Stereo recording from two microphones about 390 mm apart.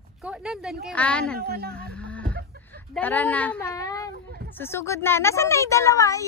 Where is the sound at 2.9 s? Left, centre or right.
Centre.